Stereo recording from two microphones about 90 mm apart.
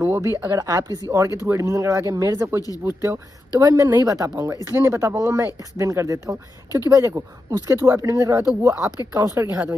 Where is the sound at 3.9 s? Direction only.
40° right (ahead or behind).